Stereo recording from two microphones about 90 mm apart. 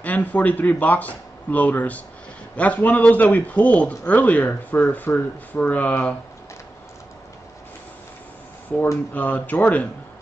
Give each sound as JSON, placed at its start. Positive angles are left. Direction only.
{"t": 0.0, "sound": "a man's voice", "side_deg": 15}
{"t": 9.1, "sound": "speech", "side_deg": 20}